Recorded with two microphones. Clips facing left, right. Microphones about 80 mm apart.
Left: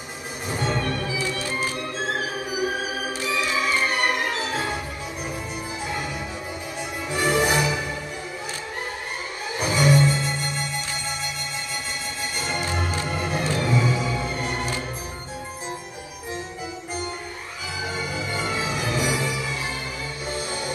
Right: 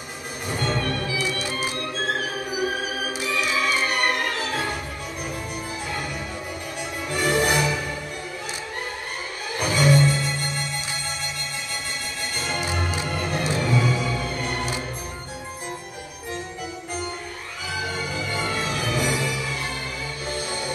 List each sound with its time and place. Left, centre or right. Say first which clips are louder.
0.5 s music: even; centre
3.3 s music: even; centre
7.2 s music: even; centre
9.6 s music: even; centre
13.0 s music: even; centre
17.9 s music: even; centre